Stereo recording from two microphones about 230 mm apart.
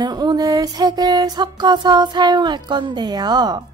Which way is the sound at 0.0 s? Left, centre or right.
Centre.